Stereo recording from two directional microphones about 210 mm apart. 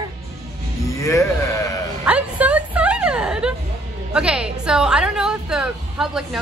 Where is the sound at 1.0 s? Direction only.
15° left (ahead or behind).